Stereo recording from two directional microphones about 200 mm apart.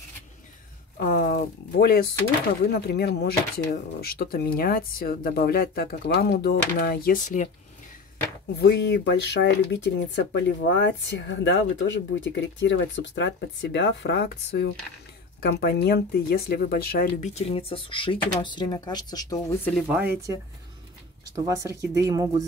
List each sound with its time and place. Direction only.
0.9 s speech: 45° left (ahead or behind)
8.5 s speech: 55° left (ahead or behind)
17.1 s speech: 35° left (ahead or behind); by 19.8 s 10° left (ahead or behind)
19.9 s speech: 10° right (ahead or behind)
21.5 s speech: 15° right (ahead or behind)